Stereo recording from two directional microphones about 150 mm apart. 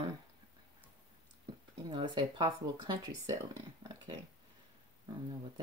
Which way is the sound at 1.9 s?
30° right (ahead or behind).